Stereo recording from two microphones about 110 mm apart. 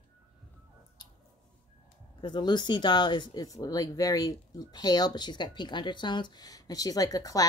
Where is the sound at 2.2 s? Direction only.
40° left (ahead or behind).